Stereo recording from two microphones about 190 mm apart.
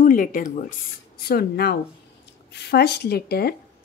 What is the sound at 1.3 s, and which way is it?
A woman's voice, 55° left (ahead or behind).